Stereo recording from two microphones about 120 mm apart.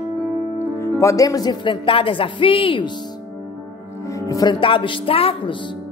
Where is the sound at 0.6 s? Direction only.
20° left (ahead or behind); by 2.9 s 50° left (ahead or behind).